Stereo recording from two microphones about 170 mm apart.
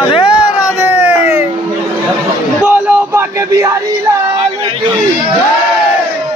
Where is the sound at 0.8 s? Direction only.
10° right (ahead or behind).